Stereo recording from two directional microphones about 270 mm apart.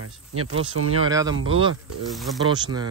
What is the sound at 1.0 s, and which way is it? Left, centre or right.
Speech, centre.